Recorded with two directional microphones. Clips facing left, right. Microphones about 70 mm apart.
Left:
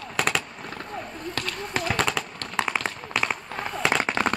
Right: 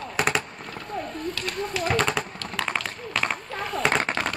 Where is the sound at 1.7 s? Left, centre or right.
Left.